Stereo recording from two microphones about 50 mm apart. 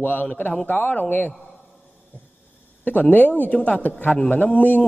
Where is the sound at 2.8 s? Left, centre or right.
Left.